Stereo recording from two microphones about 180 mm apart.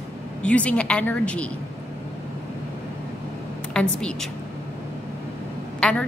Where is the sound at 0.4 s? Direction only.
5° left (ahead or behind).